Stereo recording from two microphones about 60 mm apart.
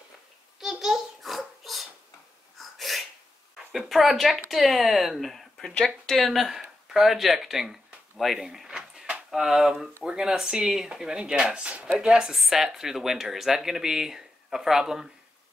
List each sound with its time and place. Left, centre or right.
0.6 s a sound: centre
2.5 s sneeze: centre
3.7 s speech: centre